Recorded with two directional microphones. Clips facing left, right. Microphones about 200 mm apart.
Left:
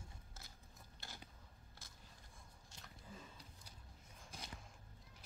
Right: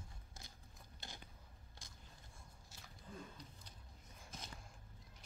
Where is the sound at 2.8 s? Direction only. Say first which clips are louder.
Right 4 dB; 5° left (ahead or behind).